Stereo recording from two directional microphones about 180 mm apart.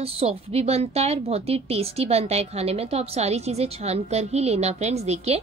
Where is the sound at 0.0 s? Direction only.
35° right (ahead or behind).